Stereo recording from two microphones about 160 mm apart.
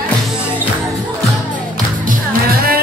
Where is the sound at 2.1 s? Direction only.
65° right (ahead or behind).